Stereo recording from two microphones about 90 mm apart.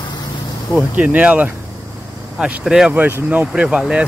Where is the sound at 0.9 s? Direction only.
15° right (ahead or behind).